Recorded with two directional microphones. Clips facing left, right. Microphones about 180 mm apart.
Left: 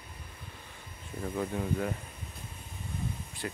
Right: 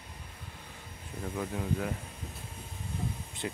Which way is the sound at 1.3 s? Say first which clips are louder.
Left 2 dB; centre (ahead or behind).